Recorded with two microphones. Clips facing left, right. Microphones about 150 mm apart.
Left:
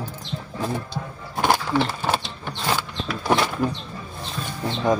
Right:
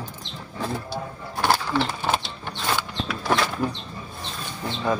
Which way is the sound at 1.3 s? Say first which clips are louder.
Left 2 dB; 15° left (ahead or behind).